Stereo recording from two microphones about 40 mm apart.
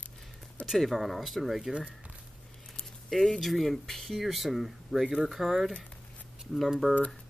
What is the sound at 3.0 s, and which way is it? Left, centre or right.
Speech, centre.